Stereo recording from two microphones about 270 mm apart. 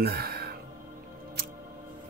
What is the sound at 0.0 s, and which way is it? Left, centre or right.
Music, right.